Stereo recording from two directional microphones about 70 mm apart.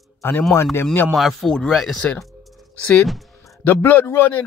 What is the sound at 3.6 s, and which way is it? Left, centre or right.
Speech, left.